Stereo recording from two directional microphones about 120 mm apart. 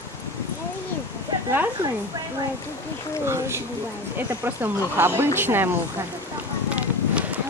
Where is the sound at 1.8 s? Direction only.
20° right (ahead or behind).